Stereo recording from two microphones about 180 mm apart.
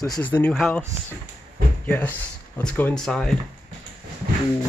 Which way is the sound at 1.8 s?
10° left (ahead or behind).